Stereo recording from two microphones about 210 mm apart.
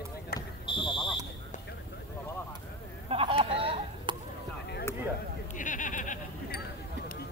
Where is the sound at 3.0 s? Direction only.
25° right (ahead or behind).